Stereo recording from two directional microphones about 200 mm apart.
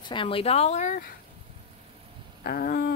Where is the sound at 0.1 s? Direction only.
25° left (ahead or behind).